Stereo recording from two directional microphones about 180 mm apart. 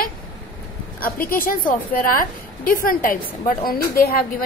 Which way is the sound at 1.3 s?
50° left (ahead or behind).